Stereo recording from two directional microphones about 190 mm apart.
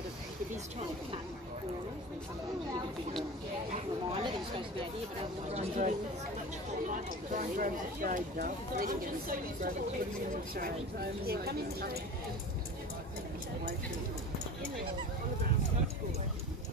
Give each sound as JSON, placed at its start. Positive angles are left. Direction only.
{"t": 4.1, "sound": "speech", "side_deg": -25}
{"t": 11.2, "sound": "speech", "side_deg": -55}